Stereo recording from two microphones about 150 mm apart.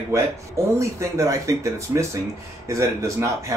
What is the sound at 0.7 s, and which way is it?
Speech, 20° right (ahead or behind).